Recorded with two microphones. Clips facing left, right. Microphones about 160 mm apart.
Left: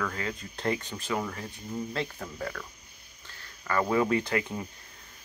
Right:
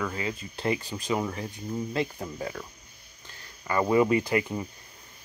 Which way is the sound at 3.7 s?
15° right (ahead or behind).